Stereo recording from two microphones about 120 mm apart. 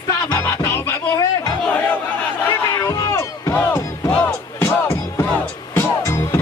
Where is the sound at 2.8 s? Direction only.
25° left (ahead or behind).